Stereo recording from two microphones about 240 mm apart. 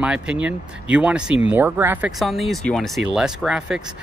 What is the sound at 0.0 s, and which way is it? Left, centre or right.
Speech, centre.